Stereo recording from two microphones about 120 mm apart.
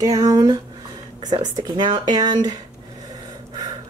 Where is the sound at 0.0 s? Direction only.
30° right (ahead or behind).